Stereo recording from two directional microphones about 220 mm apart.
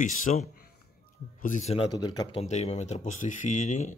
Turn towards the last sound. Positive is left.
turn(degrees=35)  # may be behind; listen again after turning